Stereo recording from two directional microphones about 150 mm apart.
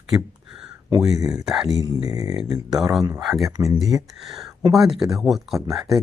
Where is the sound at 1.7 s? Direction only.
25° right (ahead or behind).